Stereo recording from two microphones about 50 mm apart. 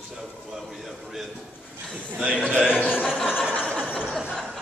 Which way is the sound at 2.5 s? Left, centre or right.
Centre.